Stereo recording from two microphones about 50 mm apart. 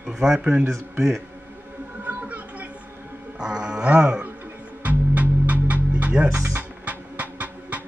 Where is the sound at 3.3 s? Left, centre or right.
Centre.